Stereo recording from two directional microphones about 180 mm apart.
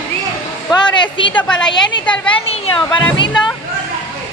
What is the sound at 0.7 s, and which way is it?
Speech, 25° left (ahead or behind).